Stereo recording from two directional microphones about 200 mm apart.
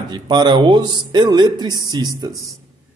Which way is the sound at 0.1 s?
20° right (ahead or behind).